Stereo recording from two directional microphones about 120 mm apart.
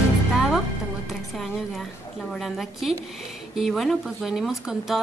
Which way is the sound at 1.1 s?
Centre (ahead or behind).